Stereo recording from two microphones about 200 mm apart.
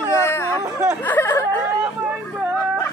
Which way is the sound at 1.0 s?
10° left (ahead or behind).